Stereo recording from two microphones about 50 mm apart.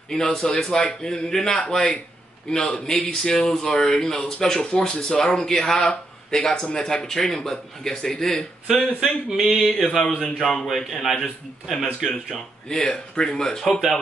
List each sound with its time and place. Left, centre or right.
0.1 s speech: centre
8.7 s a man's voice: centre
12.6 s speech: centre